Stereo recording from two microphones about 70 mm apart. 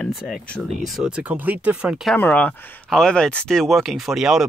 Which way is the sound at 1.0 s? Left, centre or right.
Centre.